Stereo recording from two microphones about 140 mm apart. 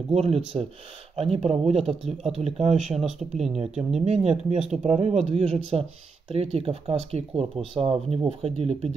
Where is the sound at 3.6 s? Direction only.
50° right (ahead or behind).